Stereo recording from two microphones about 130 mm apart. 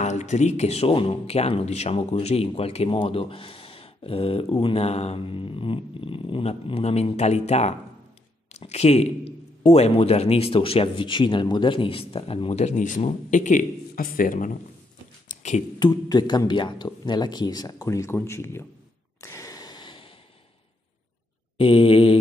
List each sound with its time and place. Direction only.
0.0 s speech: 65° left (ahead or behind); by 14.6 s 80° left
15.2 s a sound: 65° left (ahead or behind)
15.8 s speech: 30° left (ahead or behind)
19.2 s gasp: 25° left (ahead or behind)
21.5 s speech: 45° left (ahead or behind)